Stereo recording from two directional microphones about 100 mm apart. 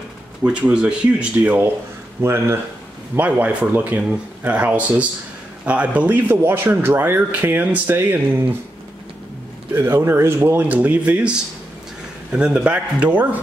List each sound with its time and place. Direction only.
0.4 s speech: 10° right (ahead or behind)
9.8 s speech: 25° right (ahead or behind)